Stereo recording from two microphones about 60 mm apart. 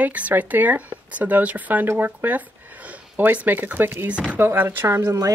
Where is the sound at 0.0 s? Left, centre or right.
Right.